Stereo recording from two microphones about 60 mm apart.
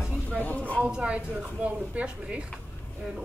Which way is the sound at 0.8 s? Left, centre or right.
Centre.